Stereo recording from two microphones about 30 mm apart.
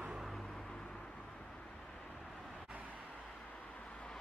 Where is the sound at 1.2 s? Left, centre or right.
Left.